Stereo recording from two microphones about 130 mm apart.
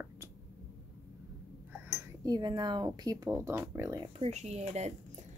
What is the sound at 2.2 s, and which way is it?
A woman's voice, 35° right (ahead or behind).